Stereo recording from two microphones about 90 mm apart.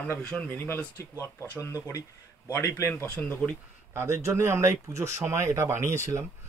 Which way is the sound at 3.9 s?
35° right (ahead or behind).